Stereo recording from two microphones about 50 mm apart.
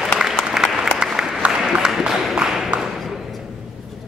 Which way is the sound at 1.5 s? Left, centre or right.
Centre.